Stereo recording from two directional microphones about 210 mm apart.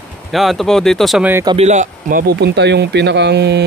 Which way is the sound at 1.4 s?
30° right (ahead or behind).